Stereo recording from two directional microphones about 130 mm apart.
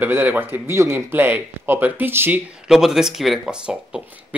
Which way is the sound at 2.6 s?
5° right (ahead or behind).